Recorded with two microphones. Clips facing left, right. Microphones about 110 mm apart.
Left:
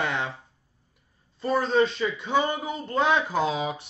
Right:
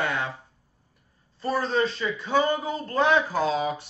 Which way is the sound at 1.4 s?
15° left (ahead or behind).